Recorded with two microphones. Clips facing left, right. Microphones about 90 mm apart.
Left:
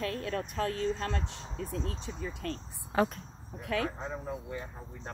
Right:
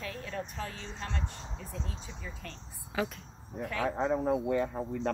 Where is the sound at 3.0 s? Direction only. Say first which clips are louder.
Left 5 dB; 40° left (ahead or behind).